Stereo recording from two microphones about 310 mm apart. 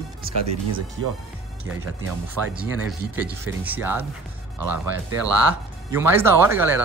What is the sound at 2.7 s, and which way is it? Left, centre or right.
Speech, centre.